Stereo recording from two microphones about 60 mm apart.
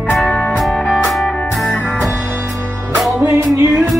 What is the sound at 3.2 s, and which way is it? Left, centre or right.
Music, right.